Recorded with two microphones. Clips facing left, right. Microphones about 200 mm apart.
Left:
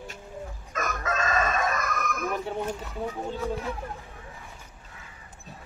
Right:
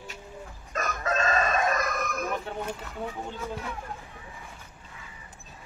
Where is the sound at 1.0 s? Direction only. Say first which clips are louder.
Right 1 dB; 35° right (ahead or behind).